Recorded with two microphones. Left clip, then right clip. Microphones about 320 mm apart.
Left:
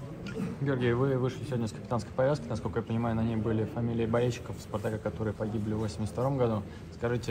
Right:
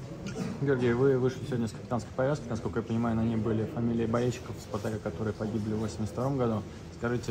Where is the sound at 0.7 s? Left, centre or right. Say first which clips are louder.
Right 3 dB; left.